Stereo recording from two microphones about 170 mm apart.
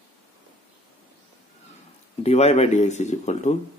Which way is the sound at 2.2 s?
40° left (ahead or behind).